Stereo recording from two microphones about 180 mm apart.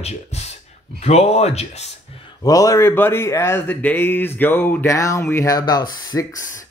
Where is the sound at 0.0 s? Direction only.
35° left (ahead or behind).